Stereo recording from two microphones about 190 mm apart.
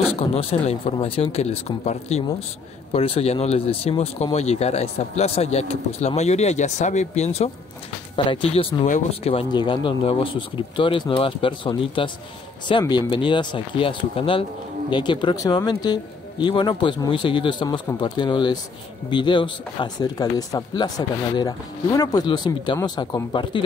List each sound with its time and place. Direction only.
0.1 s speech: 35° left (ahead or behind)